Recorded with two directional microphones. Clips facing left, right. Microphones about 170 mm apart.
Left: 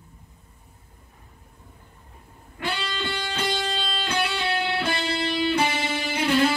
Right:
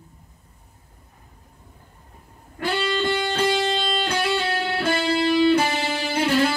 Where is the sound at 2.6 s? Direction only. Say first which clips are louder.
Right 7 dB; 45° right (ahead or behind).